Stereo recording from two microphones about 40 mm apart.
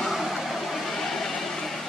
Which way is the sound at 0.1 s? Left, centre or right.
Centre.